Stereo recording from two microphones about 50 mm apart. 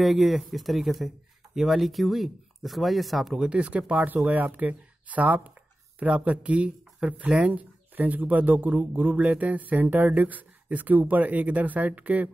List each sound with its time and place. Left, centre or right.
0.0 s speech: centre
3.3 s speech: right
7.5 s speech: right